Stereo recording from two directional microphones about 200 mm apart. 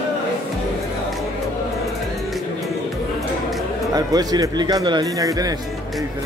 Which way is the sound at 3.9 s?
20° right (ahead or behind).